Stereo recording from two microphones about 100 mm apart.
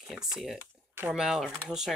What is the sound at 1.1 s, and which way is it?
Speech, 5° right (ahead or behind).